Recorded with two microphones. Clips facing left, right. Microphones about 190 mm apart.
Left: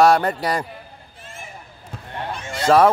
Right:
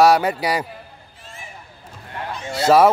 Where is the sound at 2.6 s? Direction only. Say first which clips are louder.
Right 1 dB; 5° right (ahead or behind).